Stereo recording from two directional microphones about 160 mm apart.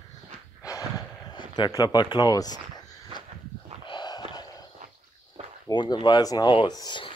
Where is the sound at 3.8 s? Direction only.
30° left (ahead or behind).